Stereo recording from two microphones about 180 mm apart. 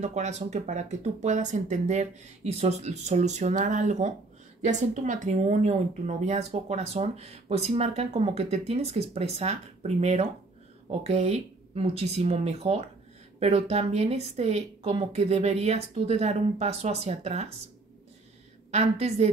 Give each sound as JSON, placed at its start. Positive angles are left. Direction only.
{"t": 0.0, "sound": "speech", "side_deg": -40}
{"t": 18.7, "sound": "speech", "side_deg": -40}